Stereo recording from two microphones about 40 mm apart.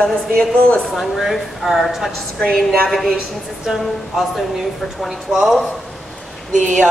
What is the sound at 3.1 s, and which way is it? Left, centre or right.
Speech, centre.